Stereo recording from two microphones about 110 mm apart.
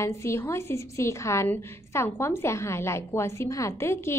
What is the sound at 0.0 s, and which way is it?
A woman's voice, 25° left (ahead or behind).